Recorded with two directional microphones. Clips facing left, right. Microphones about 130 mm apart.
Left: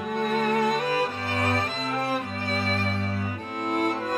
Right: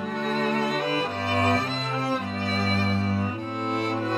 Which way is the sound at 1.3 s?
30° right (ahead or behind).